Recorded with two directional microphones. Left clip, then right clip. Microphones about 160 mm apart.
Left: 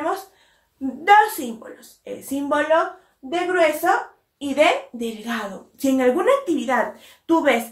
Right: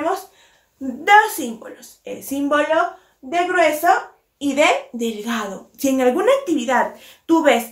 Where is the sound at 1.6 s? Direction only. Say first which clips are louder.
Right 3 dB; 15° right (ahead or behind).